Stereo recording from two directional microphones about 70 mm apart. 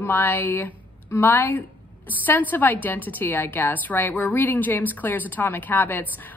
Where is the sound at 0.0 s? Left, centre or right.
Left.